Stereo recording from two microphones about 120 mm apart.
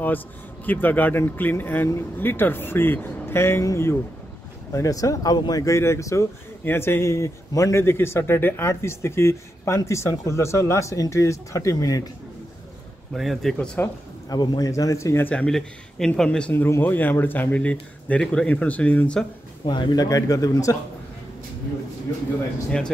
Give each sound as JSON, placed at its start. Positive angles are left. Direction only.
{"t": 0.7, "sound": "speech", "side_deg": 15}
{"t": 13.1, "sound": "speech", "side_deg": 0}
{"t": 14.3, "sound": "speech", "side_deg": 35}
{"t": 15.3, "sound": "speech", "side_deg": 5}
{"t": 19.6, "sound": "speech", "side_deg": 40}